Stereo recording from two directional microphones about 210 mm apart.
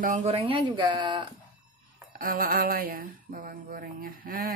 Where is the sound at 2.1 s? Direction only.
45° right (ahead or behind).